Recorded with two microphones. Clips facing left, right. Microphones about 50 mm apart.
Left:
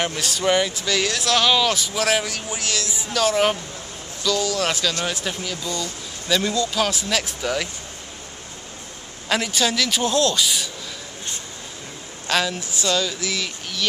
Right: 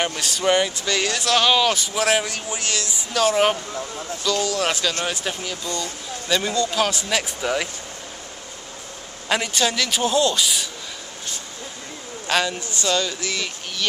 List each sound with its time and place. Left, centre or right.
0.0 s speech: centre
9.3 s speech: centre
12.3 s speech: centre